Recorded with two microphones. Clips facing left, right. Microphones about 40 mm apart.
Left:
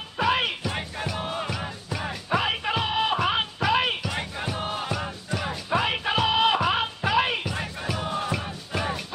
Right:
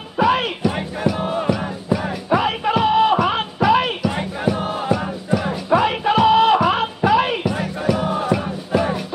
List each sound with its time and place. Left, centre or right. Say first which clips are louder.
0.2 s music: right 7 dB; centre
1.5 s music: right 11 dB; centre
4.0 s music: right 9 dB; centre
7.9 s music: right 9 dB; centre